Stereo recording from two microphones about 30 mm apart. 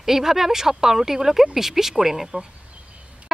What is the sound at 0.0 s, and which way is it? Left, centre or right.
Speech, centre.